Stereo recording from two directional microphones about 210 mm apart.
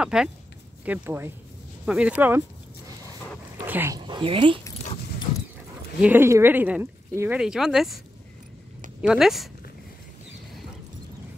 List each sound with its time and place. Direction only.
0.0 s speech: 5° right (ahead or behind)
3.6 s speech: 10° right (ahead or behind)
4.0 s speech: 25° right (ahead or behind)
5.9 s speech: 10° right (ahead or behind)
9.0 s speech: centre (ahead or behind)